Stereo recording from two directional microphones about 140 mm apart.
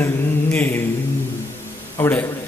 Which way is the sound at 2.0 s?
15° left (ahead or behind).